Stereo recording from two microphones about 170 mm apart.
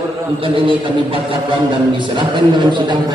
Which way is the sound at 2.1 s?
30° right (ahead or behind).